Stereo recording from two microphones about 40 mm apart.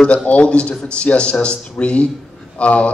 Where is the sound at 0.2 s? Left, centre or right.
Left.